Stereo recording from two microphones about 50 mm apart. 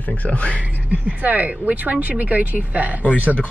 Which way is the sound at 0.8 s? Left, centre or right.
Right.